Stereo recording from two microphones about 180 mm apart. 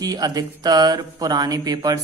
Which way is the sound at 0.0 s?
20° right (ahead or behind).